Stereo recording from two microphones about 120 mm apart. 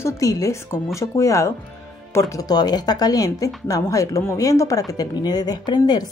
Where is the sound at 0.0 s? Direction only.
30° left (ahead or behind).